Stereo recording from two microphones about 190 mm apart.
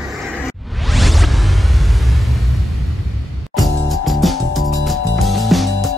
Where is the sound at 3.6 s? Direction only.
Centre (ahead or behind).